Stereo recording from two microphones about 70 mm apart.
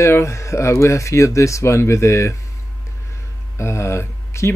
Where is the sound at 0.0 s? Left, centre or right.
Left.